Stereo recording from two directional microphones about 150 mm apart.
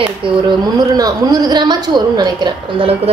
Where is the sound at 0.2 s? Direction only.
30° right (ahead or behind).